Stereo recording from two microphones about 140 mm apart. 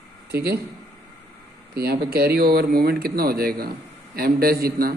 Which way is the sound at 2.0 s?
90° right.